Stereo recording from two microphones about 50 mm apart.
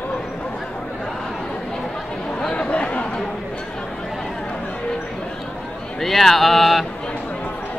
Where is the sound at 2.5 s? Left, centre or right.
Left.